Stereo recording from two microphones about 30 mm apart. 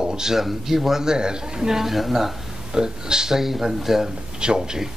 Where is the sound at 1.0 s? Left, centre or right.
Right.